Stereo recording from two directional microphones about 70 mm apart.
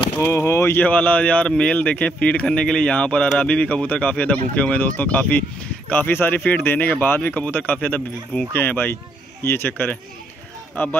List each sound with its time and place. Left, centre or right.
0.2 s speech: left
0.8 s speech: left